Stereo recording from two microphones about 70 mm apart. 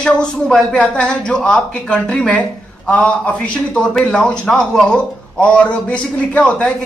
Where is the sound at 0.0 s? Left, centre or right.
Centre.